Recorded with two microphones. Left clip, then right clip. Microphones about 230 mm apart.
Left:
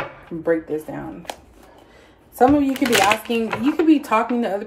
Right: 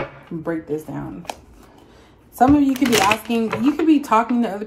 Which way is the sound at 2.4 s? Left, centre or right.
Right.